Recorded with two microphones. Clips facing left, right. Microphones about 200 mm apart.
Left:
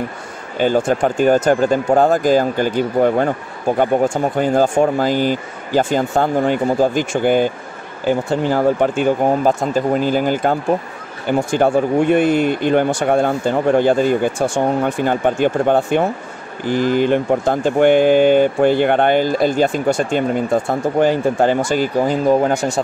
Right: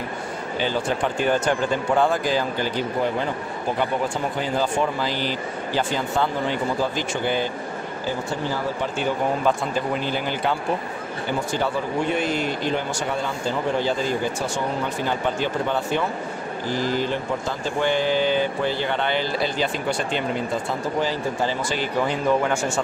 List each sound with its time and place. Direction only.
0.6 s speech: 45° left (ahead or behind)